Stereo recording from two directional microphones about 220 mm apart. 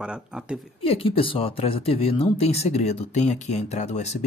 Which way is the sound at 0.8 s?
25° left (ahead or behind).